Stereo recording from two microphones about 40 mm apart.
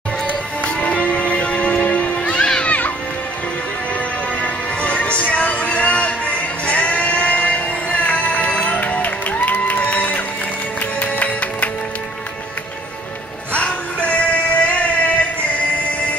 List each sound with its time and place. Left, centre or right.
0.7 s music: left
4.4 s music: left
13.5 s music: left